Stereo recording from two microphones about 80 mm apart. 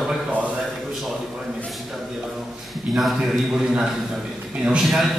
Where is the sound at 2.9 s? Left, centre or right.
Centre.